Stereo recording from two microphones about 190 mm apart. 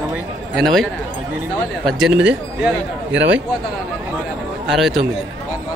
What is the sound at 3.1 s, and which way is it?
Speech, 75° right (ahead or behind).